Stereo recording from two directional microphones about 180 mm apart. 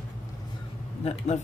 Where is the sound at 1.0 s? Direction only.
35° left (ahead or behind).